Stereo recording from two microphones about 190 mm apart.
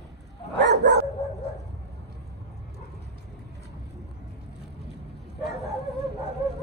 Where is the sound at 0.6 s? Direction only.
65° right (ahead or behind).